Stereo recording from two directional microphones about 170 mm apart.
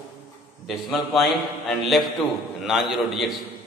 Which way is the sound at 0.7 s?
Centre (ahead or behind).